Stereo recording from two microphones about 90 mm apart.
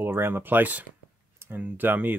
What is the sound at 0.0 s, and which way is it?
Speech, 25° right (ahead or behind).